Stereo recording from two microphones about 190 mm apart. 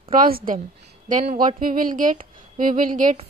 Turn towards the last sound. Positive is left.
turn(degrees=-45)  # may be behind; listen again after turning